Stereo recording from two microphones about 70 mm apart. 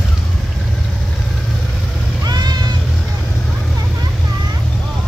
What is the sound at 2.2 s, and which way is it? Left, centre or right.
Meow, right.